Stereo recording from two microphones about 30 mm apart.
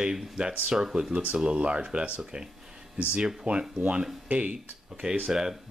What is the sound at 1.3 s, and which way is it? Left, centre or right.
Speech, right.